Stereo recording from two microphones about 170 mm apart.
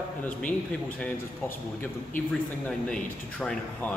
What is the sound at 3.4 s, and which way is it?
Speech, 5° left (ahead or behind).